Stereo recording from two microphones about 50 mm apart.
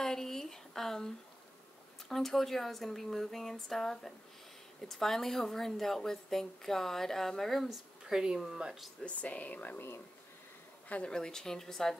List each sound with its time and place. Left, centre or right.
0.0 s a sound: centre
2.0 s a woman's voice: centre
7.7 s a woman's voice: centre
9.2 s speech: left
9.8 s speech: left
11.1 s a woman's voice: centre